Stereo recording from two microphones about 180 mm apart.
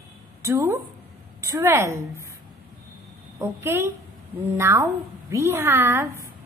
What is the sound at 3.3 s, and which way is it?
A woman's voice, 15° right (ahead or behind).